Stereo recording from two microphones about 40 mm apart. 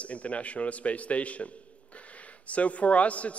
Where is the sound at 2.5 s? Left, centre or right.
Left.